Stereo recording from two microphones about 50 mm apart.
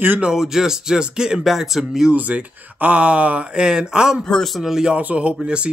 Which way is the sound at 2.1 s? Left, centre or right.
Right.